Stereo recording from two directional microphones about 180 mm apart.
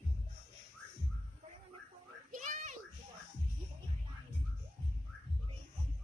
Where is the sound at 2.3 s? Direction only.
45° right (ahead or behind).